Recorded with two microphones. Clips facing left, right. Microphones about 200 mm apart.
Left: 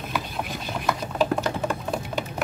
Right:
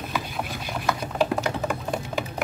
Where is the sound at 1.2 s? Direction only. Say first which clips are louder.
Left 1 dB; 10° right (ahead or behind).